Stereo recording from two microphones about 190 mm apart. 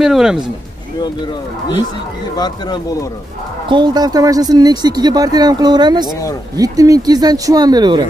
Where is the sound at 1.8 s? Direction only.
20° left (ahead or behind).